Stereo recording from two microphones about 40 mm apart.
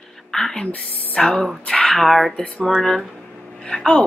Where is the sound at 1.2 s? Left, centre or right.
Centre.